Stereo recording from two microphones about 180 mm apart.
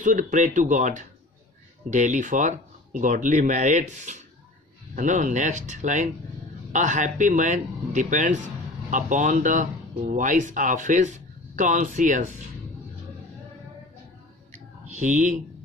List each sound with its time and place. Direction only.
0.0 s speech: 45° right (ahead or behind)
14.9 s speech: 40° right (ahead or behind)